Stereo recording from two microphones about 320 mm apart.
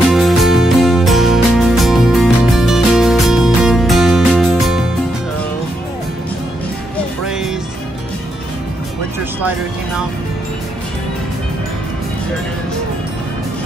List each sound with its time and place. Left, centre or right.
0.1 s music: centre